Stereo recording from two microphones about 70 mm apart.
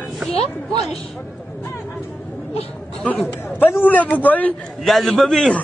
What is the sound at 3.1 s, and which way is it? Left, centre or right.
Speech, left.